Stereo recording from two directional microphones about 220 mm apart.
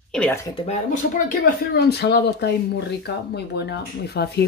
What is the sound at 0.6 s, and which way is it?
Speech, 30° left (ahead or behind).